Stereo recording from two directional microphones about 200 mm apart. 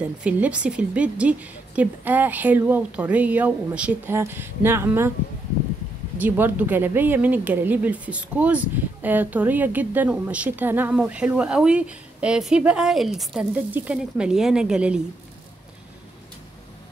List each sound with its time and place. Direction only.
0.2 s speech: 5° right (ahead or behind)
6.1 s speech: 10° right (ahead or behind)